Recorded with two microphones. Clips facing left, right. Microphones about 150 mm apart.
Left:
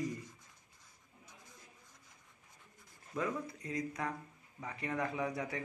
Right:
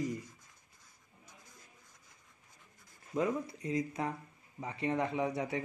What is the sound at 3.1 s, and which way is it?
Speech, 25° right (ahead or behind).